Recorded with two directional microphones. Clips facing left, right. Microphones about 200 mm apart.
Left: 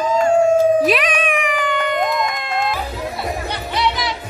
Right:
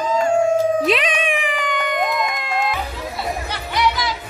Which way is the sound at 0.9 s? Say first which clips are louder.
Left 1 dB; 25° right (ahead or behind).